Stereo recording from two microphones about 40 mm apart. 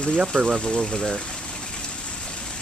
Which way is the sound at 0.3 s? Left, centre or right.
Left.